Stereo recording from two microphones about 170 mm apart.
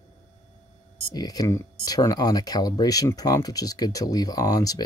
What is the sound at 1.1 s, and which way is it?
Speech, 20° left (ahead or behind).